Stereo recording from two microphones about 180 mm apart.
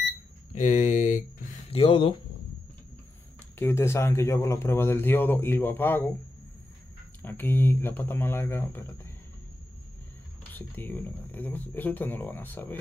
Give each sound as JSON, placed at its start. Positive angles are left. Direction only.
{"t": 0.6, "sound": "speech", "side_deg": 45}
{"t": 1.7, "sound": "speech", "side_deg": 30}
{"t": 3.5, "sound": "speech", "side_deg": 15}
{"t": 7.2, "sound": "speech", "side_deg": 10}
{"t": 10.5, "sound": "speech", "side_deg": 10}